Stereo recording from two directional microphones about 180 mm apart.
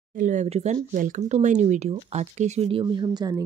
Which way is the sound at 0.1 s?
45° right (ahead or behind).